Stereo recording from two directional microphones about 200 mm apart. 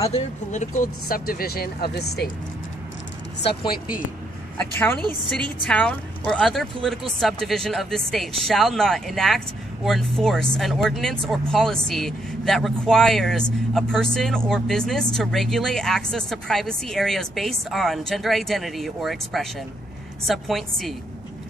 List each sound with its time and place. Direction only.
0.1 s speech: 35° left (ahead or behind); by 2.2 s 55° left (ahead or behind)
4.6 s speech: 10° left (ahead or behind)